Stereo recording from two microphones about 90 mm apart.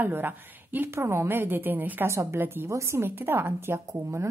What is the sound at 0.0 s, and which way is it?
A woman's voice, 20° right (ahead or behind).